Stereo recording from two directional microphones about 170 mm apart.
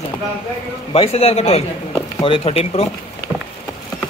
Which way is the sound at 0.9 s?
35° left (ahead or behind).